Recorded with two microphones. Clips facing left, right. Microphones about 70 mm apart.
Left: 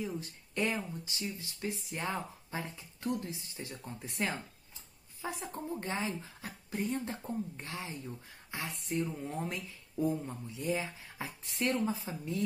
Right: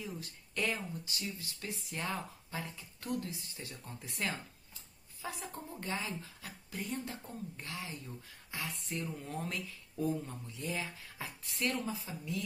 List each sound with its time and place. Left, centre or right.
0.0 s speech: left